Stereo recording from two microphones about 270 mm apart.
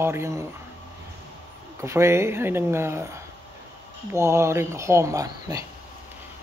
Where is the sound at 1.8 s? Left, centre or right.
Centre.